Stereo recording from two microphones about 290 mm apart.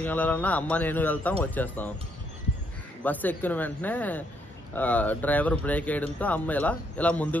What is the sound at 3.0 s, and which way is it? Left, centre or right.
Speech, centre.